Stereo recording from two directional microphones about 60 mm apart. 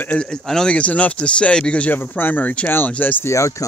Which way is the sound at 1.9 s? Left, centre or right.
Left.